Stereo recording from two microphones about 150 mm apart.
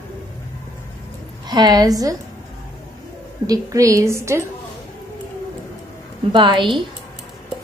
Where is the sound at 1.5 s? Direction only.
25° right (ahead or behind).